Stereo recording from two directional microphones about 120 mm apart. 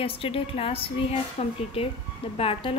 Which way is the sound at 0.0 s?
50° left (ahead or behind).